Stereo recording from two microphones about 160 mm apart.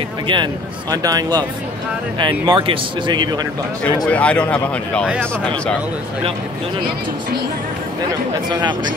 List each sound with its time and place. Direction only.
0.3 s speech: 30° right (ahead or behind)
4.1 s speech: 10° left (ahead or behind)
8.5 s speech: 30° right (ahead or behind)